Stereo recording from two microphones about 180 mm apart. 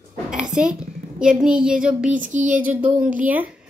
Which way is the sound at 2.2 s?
45° right (ahead or behind).